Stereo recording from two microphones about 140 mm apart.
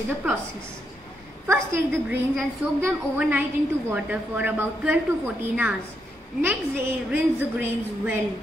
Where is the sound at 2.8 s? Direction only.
10° right (ahead or behind).